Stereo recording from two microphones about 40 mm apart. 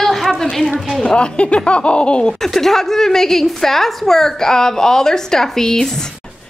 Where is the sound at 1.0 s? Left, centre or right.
Left.